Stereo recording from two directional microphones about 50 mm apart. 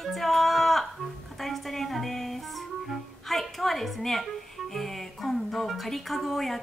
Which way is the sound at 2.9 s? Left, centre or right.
Centre.